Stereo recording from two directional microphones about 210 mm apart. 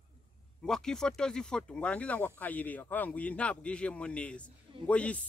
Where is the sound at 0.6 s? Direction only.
5° left (ahead or behind).